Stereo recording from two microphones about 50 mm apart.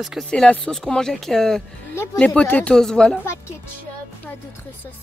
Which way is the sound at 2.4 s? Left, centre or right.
Left.